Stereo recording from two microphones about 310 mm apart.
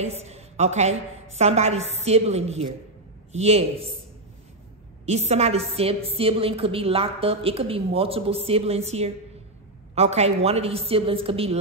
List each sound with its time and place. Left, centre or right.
0.0 s a woman's voice: centre
5.0 s a woman's voice: right